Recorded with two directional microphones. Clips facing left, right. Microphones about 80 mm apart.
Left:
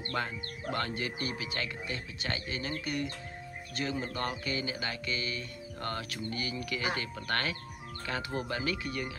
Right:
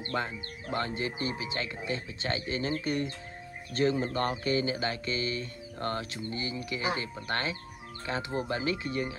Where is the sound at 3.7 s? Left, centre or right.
Right.